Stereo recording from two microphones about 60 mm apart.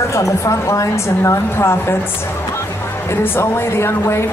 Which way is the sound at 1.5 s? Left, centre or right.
Left.